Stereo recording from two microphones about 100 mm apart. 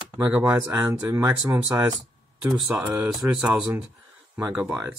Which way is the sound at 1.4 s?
25° right (ahead or behind).